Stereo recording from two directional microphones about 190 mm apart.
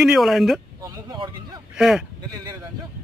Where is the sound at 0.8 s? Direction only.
20° right (ahead or behind).